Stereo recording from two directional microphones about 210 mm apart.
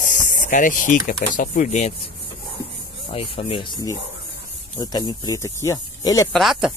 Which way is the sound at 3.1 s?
25° left (ahead or behind).